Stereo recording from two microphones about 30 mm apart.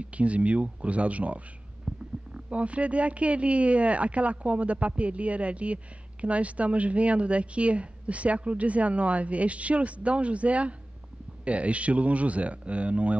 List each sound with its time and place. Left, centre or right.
0.0 s a woman's voice: right
1.9 s a woman's voice: right